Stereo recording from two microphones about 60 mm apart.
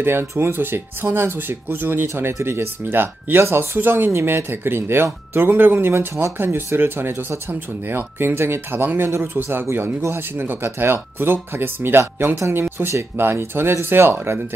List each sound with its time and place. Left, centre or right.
0.0 s speech: right
12.4 s speech: right
12.6 s speech: right